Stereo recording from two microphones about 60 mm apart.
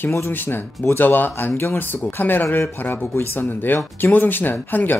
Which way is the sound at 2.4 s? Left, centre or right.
Left.